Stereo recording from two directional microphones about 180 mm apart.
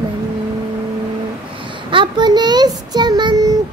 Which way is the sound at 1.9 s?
25° right (ahead or behind).